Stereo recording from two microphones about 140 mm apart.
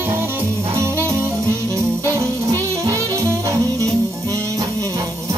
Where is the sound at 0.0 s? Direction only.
15° right (ahead or behind).